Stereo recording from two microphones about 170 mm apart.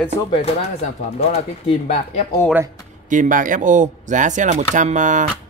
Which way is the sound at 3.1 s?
50° right (ahead or behind).